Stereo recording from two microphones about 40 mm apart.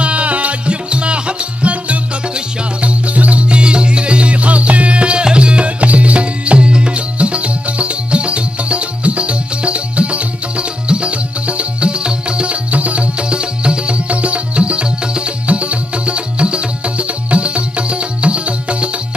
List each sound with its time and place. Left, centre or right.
0.0 s music: right